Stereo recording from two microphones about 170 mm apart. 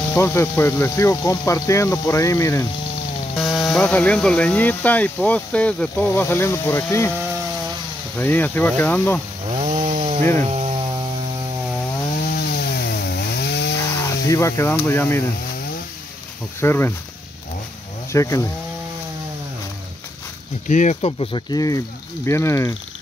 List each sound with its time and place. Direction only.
0.1 s speech: 15° left (ahead or behind)
3.3 s speech: centre (ahead or behind)
8.2 s speech: 10° left (ahead or behind)
9.5 s chainsaw: 35° right (ahead or behind)
10.4 s a sound: 40° right (ahead or behind)
12.3 s chainsaw: 70° left (ahead or behind)
14.3 s speech: 15° left (ahead or behind)
16.6 s speech: 15° left (ahead or behind)
18.1 s speech: 20° left (ahead or behind)
20.6 s speech: 45° left (ahead or behind); by 22.8 s 15° left (ahead or behind)